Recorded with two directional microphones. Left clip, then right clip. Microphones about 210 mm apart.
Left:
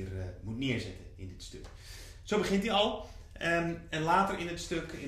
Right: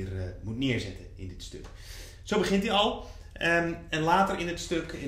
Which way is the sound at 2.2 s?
10° right (ahead or behind).